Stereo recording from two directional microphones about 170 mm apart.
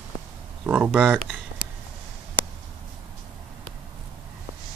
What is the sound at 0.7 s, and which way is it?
Speech, 10° right (ahead or behind).